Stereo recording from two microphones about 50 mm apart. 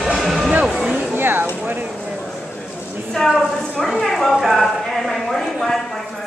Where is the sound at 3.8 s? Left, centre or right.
Centre.